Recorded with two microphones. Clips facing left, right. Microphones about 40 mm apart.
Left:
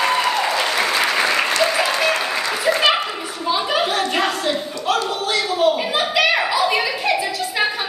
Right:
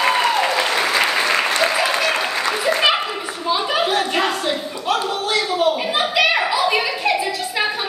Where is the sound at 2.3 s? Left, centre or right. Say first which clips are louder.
Even; centre.